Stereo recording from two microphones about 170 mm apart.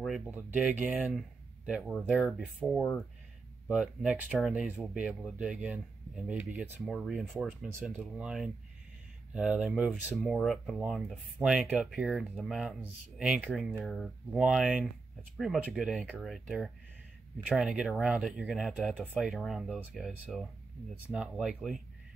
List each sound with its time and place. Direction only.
0.0 s speech: 5° right (ahead or behind)